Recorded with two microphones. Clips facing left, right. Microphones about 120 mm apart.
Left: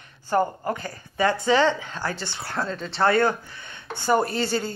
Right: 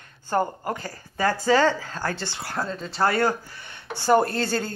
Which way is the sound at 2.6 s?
15° right (ahead or behind).